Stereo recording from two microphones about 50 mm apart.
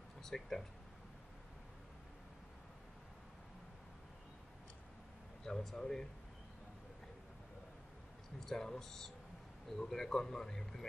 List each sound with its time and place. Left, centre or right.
0.2 s speech: centre
5.4 s a man's voice: centre
8.5 s a man's voice: centre